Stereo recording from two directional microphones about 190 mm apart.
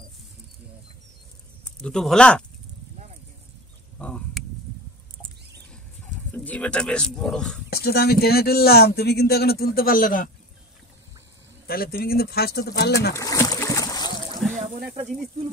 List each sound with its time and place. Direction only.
1.8 s speech: 5° left (ahead or behind)
4.0 s a sound: 5° left (ahead or behind)
6.3 s speech: 10° left (ahead or behind)
7.7 s speech: 55° left (ahead or behind)
11.6 s speech: 50° left (ahead or behind)
13.1 s boat: 15° left (ahead or behind)
14.4 s a sound: 5° left (ahead or behind)